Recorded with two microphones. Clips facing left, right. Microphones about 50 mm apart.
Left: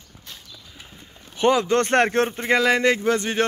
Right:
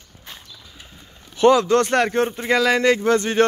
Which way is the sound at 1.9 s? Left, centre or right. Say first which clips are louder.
Even; left.